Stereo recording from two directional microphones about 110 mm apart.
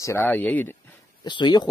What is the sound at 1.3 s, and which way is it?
Speech, 45° left (ahead or behind).